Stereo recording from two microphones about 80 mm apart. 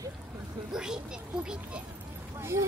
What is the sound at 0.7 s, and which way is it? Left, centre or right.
Speech, centre.